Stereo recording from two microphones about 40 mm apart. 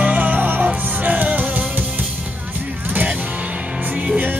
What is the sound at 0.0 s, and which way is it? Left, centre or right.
Music, right.